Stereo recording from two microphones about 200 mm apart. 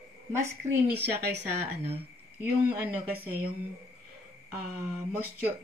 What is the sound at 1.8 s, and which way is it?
Speech, 30° right (ahead or behind).